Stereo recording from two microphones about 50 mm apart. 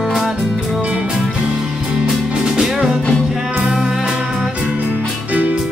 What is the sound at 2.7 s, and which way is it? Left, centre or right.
Music, centre.